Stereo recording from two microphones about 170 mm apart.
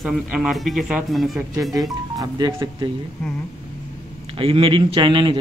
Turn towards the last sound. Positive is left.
turn(degrees=-30)  # may be behind; listen again after turning